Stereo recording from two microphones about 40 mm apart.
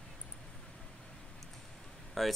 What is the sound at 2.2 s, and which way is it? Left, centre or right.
Speech, centre.